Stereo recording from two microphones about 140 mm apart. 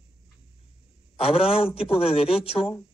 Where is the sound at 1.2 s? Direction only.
45° left (ahead or behind).